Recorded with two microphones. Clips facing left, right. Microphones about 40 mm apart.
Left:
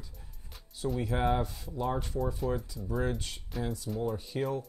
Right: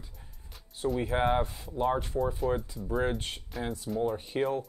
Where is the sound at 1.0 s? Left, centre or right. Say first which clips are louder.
Right 2 dB; right.